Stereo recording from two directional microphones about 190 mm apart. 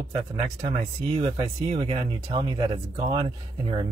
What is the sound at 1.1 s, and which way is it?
Speech, 30° right (ahead or behind).